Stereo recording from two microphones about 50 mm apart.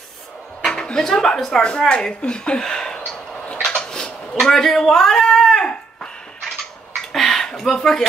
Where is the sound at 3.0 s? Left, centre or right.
Centre.